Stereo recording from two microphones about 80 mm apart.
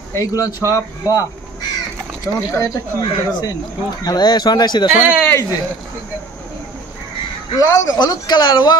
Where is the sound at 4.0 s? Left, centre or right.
Left.